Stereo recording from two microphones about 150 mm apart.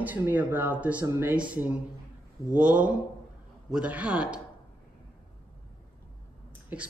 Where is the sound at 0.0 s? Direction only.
10° right (ahead or behind).